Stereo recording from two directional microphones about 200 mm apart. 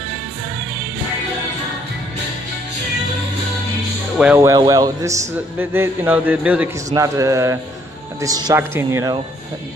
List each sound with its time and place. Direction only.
4.4 s speech: 15° right (ahead or behind)